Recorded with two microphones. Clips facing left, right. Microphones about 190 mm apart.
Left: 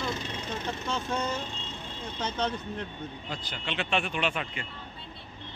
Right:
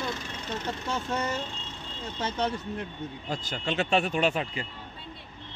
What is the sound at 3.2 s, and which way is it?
Speech, 45° right (ahead or behind).